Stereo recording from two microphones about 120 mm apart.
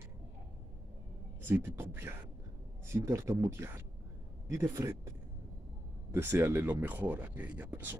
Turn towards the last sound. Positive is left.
turn(degrees=-15)  # may be behind; listen again after turning